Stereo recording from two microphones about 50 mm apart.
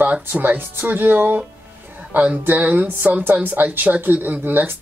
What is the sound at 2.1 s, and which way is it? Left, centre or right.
Speech, right.